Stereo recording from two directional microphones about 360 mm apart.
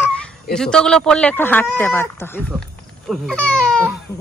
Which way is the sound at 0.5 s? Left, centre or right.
Centre.